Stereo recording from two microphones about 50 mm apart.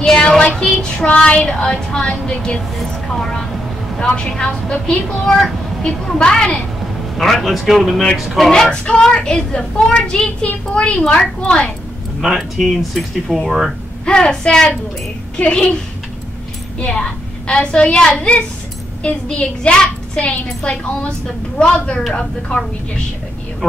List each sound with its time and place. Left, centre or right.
0.0 s child singing: centre
0.7 s speech: centre
3.1 s speech: centre
4.0 s a woman's voice: centre
7.2 s speech: centre
8.5 s a woman's voice: centre
12.2 s speech: centre
14.0 s speech: centre
15.3 s a woman's voice: left
16.8 s a woman's voice: centre
23.6 s speech: centre